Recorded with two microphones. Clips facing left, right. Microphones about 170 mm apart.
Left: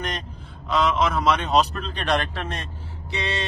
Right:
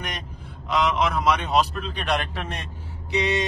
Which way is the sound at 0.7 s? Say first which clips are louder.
Left 1 dB; 15° right (ahead or behind).